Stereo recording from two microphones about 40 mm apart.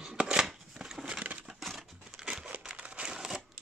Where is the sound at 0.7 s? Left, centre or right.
Centre.